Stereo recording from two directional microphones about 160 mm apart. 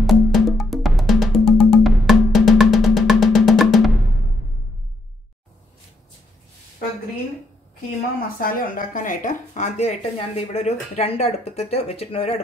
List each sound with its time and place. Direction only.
0.0 s music: centre (ahead or behind)
8.4 s speech: 60° left (ahead or behind); by 12.4 s 40° left (ahead or behind)